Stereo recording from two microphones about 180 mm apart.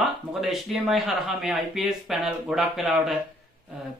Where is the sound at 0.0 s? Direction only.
Centre (ahead or behind).